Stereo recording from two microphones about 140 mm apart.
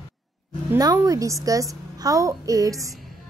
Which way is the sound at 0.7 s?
25° right (ahead or behind).